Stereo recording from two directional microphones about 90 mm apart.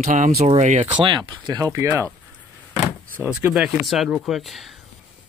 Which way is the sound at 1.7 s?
35° right (ahead or behind).